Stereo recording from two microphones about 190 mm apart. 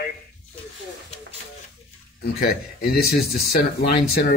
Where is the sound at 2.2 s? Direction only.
50° left (ahead or behind).